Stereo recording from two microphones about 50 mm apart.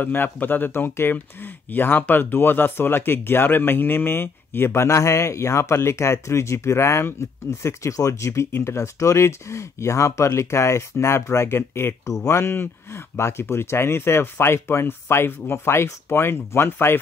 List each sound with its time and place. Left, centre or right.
0.0 s speech: left
0.7 s speech: left
8.5 s speech: left